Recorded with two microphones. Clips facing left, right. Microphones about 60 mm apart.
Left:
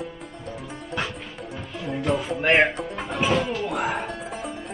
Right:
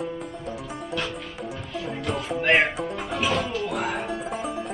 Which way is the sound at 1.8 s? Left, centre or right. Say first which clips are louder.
Left 4 dB; centre.